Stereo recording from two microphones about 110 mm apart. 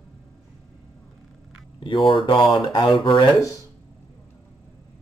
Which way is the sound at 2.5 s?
45° left (ahead or behind).